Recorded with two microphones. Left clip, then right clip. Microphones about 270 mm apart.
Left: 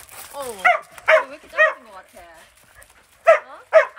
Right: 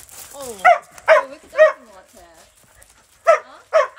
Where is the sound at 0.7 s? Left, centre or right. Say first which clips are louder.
Right 3 dB; right.